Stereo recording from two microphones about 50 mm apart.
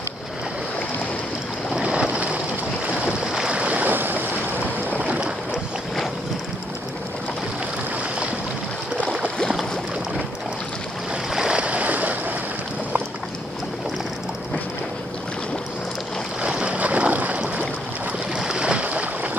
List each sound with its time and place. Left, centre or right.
1.8 s vehicle: right
3.3 s stream: centre; by 4.3 s right
4.9 s boat: right
11.3 s waves: centre
11.6 s boat: right
16.4 s boat: right
18.3 s boat: centre